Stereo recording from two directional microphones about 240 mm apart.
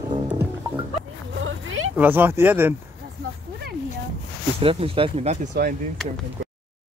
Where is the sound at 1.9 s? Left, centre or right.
Centre.